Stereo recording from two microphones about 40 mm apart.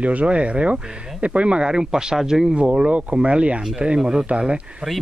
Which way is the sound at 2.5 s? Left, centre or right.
Right.